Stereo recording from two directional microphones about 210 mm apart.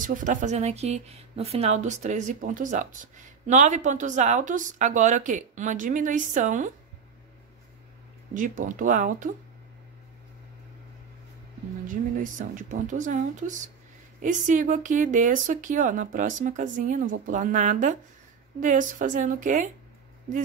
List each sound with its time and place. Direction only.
0.0 s speech: 40° right (ahead or behind)
8.4 s speech: 40° right (ahead or behind)
11.9 s speech: 40° right (ahead or behind)